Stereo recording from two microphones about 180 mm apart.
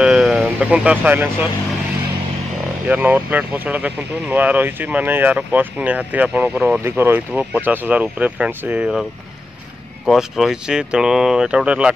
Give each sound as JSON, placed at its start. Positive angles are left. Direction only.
{"t": 0.0, "sound": "speech", "side_deg": -5}
{"t": 2.9, "sound": "speech", "side_deg": -10}
{"t": 10.0, "sound": "speech", "side_deg": 0}